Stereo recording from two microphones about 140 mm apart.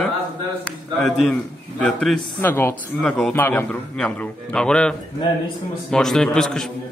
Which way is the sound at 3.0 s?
5° left (ahead or behind).